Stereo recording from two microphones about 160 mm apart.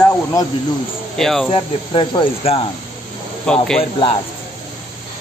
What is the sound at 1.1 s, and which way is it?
Speech, centre (ahead or behind).